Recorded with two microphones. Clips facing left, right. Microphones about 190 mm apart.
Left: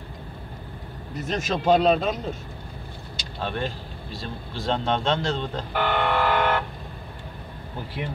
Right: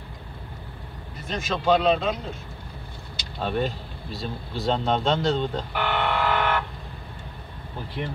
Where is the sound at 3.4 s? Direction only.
5° right (ahead or behind).